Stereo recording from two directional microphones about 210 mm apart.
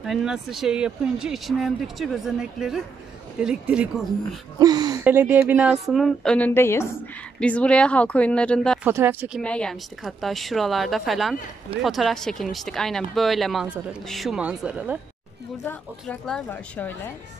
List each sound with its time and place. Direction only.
0.0 s a woman's voice: centre (ahead or behind)
4.6 s a woman's voice: 20° right (ahead or behind); by 8.7 s 5° left (ahead or behind)
8.8 s speech: 10° right (ahead or behind)
9.4 s a woman's voice: 5° left (ahead or behind)
15.6 s speech: 10° left (ahead or behind)